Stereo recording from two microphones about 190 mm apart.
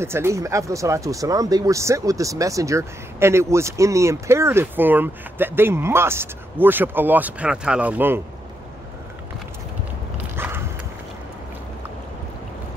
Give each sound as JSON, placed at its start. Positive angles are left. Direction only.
{"t": 0.0, "sound": "speech", "side_deg": -15}
{"t": 10.3, "sound": "clip-clop", "side_deg": -10}